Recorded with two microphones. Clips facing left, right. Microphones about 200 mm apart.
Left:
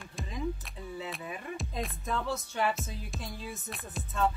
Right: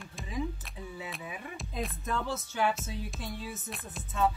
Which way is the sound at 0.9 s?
Centre (ahead or behind).